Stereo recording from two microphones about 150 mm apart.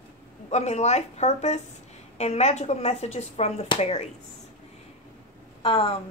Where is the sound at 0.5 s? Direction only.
50° left (ahead or behind).